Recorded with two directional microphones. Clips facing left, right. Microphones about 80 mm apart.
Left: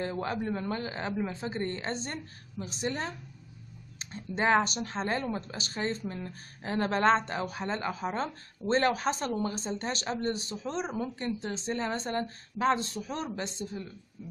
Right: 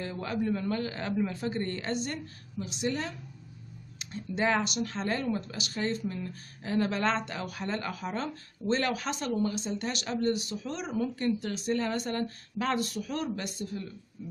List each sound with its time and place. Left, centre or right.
0.0 s a man's voice: left